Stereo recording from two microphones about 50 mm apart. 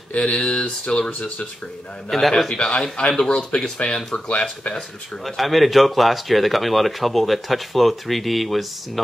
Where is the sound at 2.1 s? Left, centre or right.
Centre.